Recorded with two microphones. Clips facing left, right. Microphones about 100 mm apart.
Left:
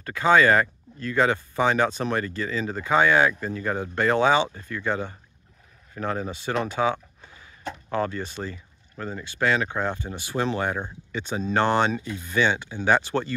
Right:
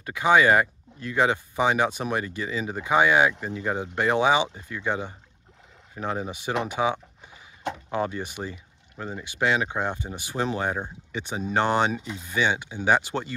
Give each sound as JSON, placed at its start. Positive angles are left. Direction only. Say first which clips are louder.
{"t": 0.0, "sound": "speech", "louder": "left 1 dB", "side_deg": -15}